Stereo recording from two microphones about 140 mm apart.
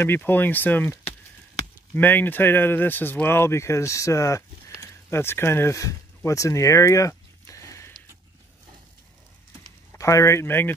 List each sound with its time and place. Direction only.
0.0 s speech: 15° left (ahead or behind)
9.9 s speech: 20° left (ahead or behind)